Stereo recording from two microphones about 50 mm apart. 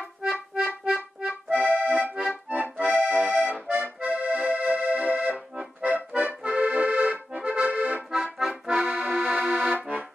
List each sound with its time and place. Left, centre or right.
1.2 s accordion: right
5.6 s accordion: right
5.9 s accordion: right
6.4 s accordion: right
8.1 s accordion: centre
8.8 s accordion: centre
9.8 s accordion: right